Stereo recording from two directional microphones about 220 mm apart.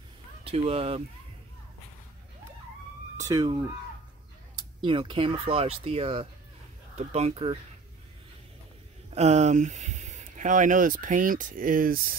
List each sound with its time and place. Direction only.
0.4 s speech: 25° right (ahead or behind)
3.2 s speech: 15° right (ahead or behind)
9.1 s speech: 30° right (ahead or behind)